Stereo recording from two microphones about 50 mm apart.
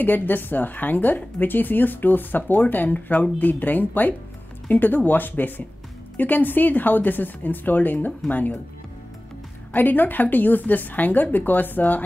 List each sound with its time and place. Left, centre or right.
0.0 s a woman's voice: left
9.7 s a woman's voice: left